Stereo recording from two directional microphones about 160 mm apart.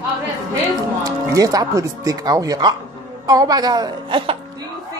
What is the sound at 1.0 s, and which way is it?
A woman's voice, 20° right (ahead or behind).